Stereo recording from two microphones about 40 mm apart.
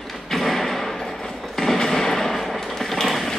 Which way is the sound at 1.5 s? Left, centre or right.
Centre.